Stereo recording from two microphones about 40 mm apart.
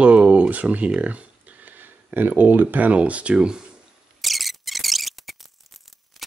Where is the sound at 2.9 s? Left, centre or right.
Right.